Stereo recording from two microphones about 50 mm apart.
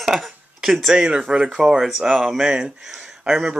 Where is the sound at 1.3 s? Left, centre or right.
Right.